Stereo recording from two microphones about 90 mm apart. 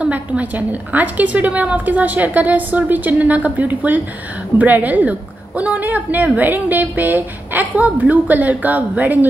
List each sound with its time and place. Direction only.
0.0 s a woman's voice: 15° right (ahead or behind)